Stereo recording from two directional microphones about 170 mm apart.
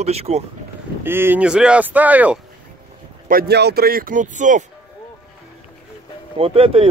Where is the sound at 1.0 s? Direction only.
15° right (ahead or behind).